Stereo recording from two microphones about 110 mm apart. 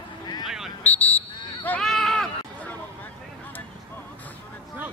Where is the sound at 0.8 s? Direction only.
15° left (ahead or behind).